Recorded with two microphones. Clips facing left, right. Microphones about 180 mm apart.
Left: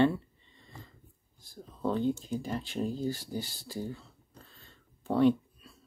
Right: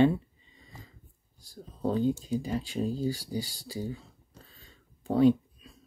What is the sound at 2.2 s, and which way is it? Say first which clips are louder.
Speech: right 3 dB; 10° right (ahead or behind).